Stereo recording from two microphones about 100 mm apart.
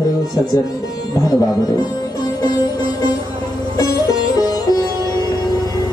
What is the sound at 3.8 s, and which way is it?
Music, 40° left (ahead or behind).